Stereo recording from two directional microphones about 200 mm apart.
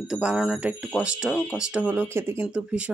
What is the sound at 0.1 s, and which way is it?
Speech, 5° right (ahead or behind).